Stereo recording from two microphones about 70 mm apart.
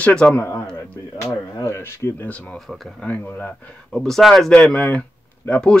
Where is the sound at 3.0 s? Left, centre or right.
Left.